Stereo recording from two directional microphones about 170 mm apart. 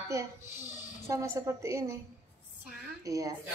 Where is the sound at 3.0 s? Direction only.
20° right (ahead or behind).